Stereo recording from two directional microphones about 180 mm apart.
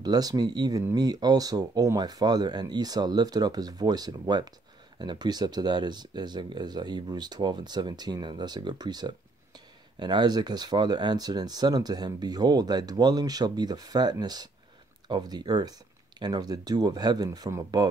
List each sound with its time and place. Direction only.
0.0 s speech: 20° right (ahead or behind)